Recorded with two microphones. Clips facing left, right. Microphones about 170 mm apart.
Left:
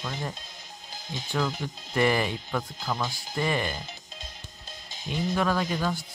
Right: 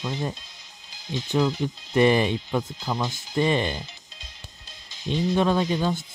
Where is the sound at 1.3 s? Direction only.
20° right (ahead or behind).